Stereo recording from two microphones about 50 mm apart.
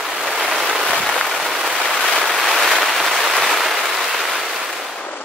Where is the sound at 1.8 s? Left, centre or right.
Centre.